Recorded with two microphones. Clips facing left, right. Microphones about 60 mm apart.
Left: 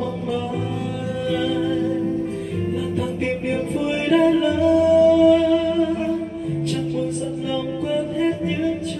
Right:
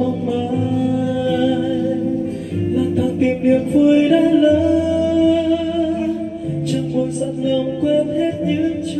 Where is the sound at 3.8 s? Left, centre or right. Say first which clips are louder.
Right 3 dB; left.